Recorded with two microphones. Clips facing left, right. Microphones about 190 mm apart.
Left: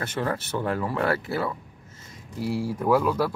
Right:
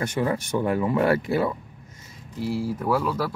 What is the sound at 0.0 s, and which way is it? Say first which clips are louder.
Speech: right 3 dB; 10° right (ahead or behind).